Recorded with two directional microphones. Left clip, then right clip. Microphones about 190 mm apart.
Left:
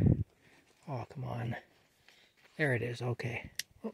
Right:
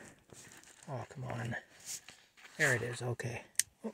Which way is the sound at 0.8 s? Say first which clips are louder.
Left 2 dB; 50° left (ahead or behind).